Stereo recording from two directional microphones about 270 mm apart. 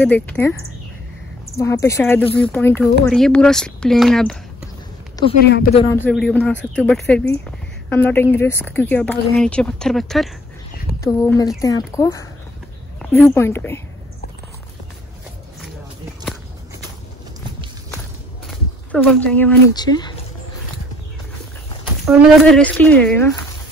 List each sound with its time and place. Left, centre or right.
0.0 s speech: centre
1.6 s a woman's voice: centre
5.2 s speech: centre
5.5 s speech: left
5.8 s speech: centre
11.0 s a woman's voice: centre
18.5 s speech: centre
21.8 s speech: centre